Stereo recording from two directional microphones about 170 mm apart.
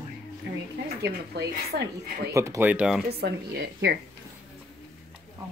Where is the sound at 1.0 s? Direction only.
80° right.